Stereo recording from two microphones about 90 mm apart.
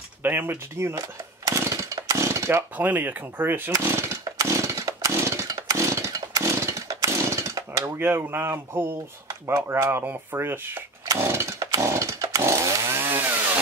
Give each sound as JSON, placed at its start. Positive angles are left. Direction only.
{"t": 0.2, "sound": "tools", "side_deg": -20}
{"t": 2.9, "sound": "speech", "side_deg": -20}
{"t": 3.7, "sound": "chainsaw", "side_deg": -40}
{"t": 9.7, "sound": "speech", "side_deg": -25}
{"t": 11.1, "sound": "chainsaw", "side_deg": -35}